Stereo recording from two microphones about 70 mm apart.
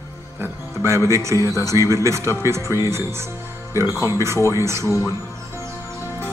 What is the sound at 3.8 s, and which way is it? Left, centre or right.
Speech, left.